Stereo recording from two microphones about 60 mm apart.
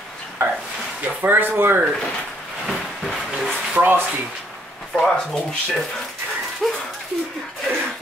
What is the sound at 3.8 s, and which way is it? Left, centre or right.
Speech, right.